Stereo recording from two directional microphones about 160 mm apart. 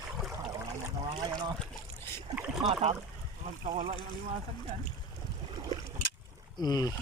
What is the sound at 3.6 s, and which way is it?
Boat, 35° right (ahead or behind).